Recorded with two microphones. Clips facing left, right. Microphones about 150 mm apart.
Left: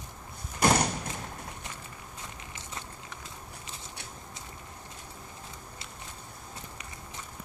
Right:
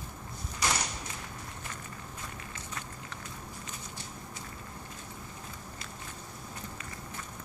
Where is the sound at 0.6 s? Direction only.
55° left (ahead or behind).